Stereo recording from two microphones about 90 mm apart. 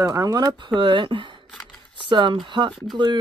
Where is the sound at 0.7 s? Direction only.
65° right (ahead or behind).